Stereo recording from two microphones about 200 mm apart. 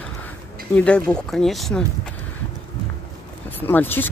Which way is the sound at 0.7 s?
5° left (ahead or behind).